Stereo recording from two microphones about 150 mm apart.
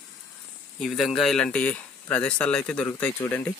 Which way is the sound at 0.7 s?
Centre (ahead or behind).